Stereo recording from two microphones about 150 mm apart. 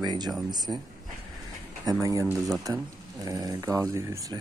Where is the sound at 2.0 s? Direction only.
20° right (ahead or behind).